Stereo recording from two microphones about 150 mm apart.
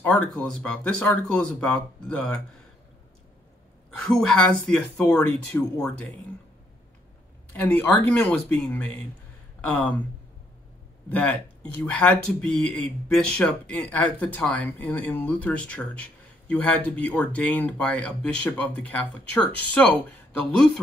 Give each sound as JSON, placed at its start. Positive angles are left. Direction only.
{"t": 0.0, "sound": "speech", "side_deg": 10}
{"t": 3.9, "sound": "a woman's voice", "side_deg": 5}
{"t": 7.5, "sound": "speech", "side_deg": 10}
{"t": 11.1, "sound": "speech", "side_deg": 10}